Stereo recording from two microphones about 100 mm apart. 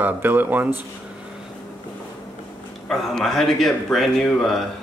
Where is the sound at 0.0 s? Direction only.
20° right (ahead or behind).